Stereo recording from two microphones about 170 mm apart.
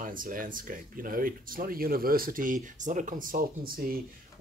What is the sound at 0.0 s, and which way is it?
Speech, 55° right (ahead or behind).